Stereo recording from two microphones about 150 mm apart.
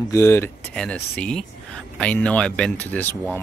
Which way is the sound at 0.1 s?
15° left (ahead or behind).